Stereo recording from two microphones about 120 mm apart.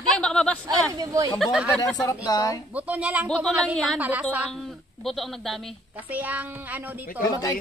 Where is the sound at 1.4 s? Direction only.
5° right (ahead or behind).